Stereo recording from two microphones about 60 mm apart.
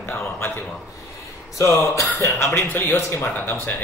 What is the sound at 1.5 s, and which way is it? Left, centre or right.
Speech, left.